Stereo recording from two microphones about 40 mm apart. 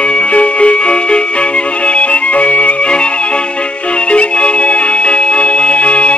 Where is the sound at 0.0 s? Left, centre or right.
Left.